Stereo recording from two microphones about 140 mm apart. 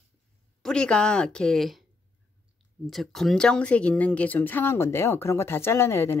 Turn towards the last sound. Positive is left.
turn(degrees=20)  # may be behind; listen again after turning